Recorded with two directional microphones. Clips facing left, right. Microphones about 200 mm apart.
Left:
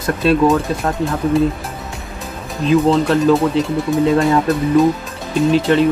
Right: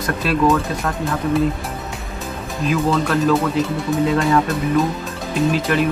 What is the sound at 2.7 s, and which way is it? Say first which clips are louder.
Speech: left 6 dB; 30° left (ahead or behind).